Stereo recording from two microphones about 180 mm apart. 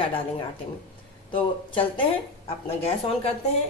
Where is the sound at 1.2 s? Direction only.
30° left (ahead or behind).